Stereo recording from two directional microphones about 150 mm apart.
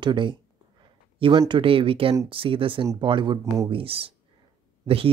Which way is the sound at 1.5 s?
35° right (ahead or behind).